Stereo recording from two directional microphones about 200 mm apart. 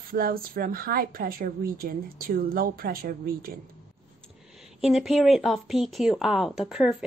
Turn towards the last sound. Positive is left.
turn(degrees=0)  # may be behind; listen again after turning